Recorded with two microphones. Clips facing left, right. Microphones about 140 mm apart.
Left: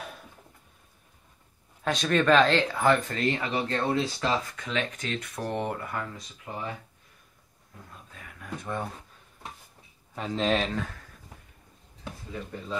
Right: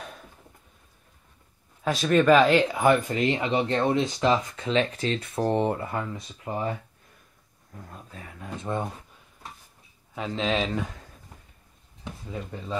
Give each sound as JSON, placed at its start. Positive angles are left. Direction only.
{"t": 1.9, "sound": "speech", "side_deg": -5}
{"t": 7.9, "sound": "speech", "side_deg": -35}
{"t": 10.1, "sound": "speech", "side_deg": 0}